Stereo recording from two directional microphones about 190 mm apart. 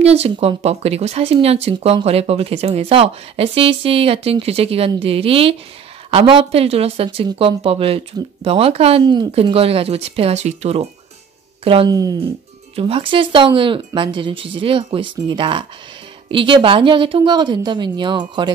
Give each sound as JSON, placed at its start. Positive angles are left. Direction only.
{"t": 0.0, "sound": "speech", "side_deg": -35}